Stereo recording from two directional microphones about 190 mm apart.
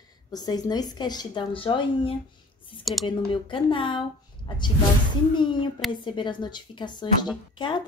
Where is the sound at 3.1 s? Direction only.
25° left (ahead or behind).